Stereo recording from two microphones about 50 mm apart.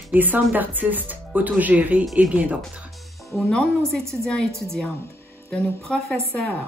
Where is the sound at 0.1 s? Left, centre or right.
Right.